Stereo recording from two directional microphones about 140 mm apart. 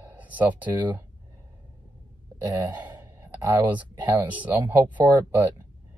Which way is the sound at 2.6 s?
10° right (ahead or behind).